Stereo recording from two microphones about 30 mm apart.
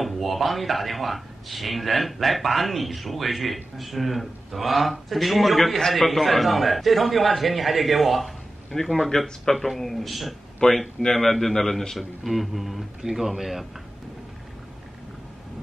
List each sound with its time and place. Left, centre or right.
0.0 s a man's voice: centre
8.7 s speech: centre
9.7 s a man's voice: centre
10.6 s speech: left
11.1 s a man's voice: centre